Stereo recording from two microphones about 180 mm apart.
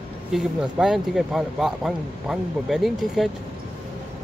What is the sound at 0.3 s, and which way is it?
Speech, centre (ahead or behind).